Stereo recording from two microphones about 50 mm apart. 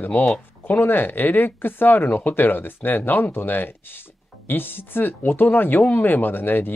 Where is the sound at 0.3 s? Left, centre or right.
Left.